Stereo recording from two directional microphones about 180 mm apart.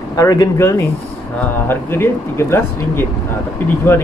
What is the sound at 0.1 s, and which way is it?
Speech, 20° left (ahead or behind).